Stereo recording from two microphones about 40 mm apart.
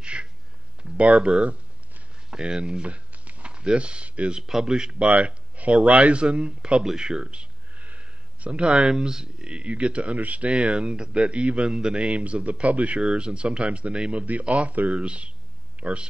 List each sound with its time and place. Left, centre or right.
0.0 s a sound: right
0.9 s speech: right
2.3 s a sound: right
4.3 s speech: centre
4.9 s speech: right
7.8 s speech: right
13.0 s speech: right